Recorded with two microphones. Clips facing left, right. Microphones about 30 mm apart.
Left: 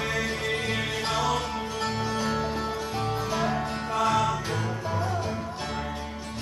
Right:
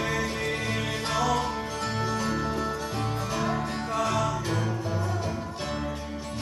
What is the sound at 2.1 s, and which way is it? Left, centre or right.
Music, centre.